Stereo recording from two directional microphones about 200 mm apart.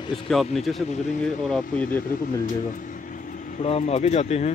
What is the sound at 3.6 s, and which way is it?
Speech, 30° left (ahead or behind).